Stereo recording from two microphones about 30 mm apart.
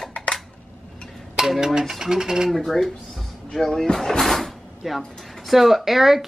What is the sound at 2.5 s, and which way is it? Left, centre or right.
Speech, centre.